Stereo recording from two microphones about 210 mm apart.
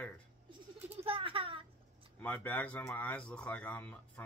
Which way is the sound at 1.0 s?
25° right (ahead or behind).